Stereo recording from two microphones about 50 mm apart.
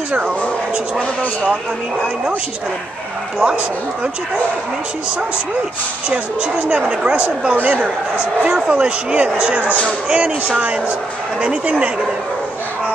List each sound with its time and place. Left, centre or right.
6.0 s speech: right
8.5 s speech: right